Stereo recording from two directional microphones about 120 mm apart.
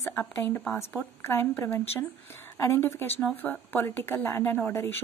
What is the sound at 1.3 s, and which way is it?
A woman's voice, 15° left (ahead or behind).